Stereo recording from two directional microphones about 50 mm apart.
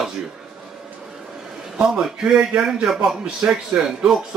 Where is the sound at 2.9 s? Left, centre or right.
Centre.